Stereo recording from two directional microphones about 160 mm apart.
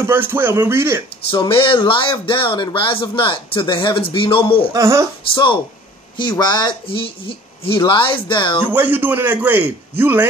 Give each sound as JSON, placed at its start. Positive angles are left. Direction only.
{"t": 0.0, "sound": "a man's voice", "side_deg": -15}
{"t": 1.3, "sound": "speech", "side_deg": 30}
{"t": 4.7, "sound": "a man's voice", "side_deg": -15}
{"t": 5.3, "sound": "speech", "side_deg": 30}
{"t": 8.7, "sound": "a man's voice", "side_deg": -10}